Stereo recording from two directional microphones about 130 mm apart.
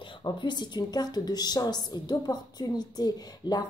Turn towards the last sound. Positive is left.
turn(degrees=30)  # may be behind; listen again after turning